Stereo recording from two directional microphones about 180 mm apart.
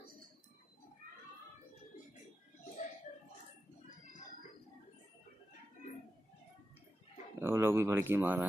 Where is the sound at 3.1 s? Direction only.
50° left (ahead or behind).